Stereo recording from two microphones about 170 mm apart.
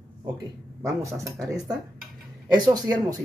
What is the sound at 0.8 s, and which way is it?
Speech, 20° right (ahead or behind).